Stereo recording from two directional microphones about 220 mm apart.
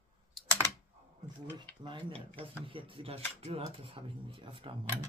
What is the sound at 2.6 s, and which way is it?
Speech, 25° right (ahead or behind).